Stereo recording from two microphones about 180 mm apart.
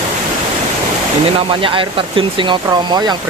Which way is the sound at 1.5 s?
30° right (ahead or behind).